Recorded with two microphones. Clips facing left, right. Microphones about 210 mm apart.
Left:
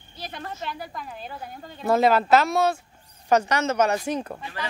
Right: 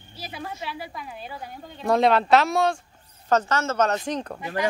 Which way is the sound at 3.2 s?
15° left (ahead or behind).